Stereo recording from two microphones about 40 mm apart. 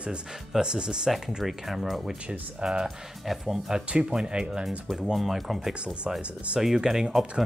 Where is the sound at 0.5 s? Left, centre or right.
Centre.